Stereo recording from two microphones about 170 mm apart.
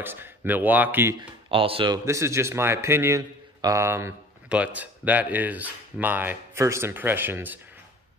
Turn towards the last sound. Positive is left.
turn(degrees=-10)  # may be behind; listen again after turning